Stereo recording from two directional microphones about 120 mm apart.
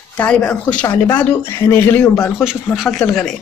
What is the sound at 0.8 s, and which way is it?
Speech, 30° left (ahead or behind).